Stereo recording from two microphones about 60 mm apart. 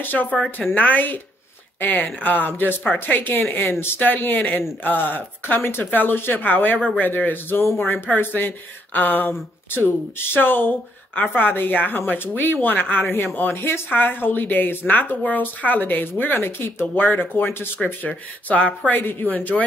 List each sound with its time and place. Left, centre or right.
0.0 s speech: left
13.6 s speech: left
18.9 s speech: left